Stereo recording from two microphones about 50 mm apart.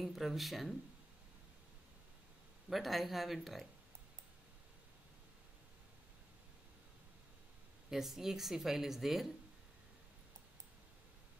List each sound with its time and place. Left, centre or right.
0.0 s speech: centre
2.7 s speech: centre
7.9 s speech: centre